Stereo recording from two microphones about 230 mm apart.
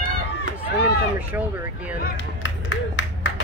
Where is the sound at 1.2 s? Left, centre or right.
Centre.